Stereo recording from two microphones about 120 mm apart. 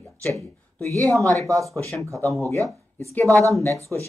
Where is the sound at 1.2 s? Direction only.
25° right (ahead or behind).